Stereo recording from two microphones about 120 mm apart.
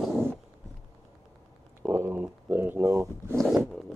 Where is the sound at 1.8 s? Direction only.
25° right (ahead or behind).